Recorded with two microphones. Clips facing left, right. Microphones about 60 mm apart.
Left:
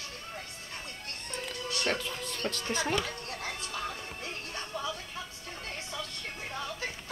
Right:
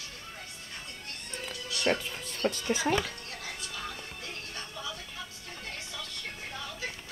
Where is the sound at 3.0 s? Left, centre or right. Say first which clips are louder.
Left 2 dB; left.